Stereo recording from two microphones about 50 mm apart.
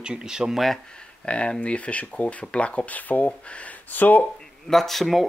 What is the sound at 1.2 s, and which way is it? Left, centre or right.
Speech, left.